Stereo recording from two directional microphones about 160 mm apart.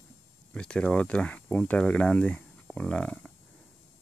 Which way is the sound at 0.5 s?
5° left (ahead or behind).